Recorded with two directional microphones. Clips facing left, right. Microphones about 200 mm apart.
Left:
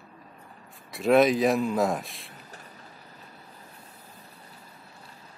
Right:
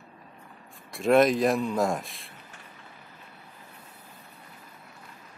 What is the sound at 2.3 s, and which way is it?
Vehicle, 40° left (ahead or behind).